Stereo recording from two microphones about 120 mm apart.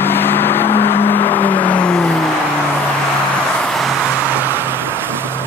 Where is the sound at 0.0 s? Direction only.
20° left (ahead or behind).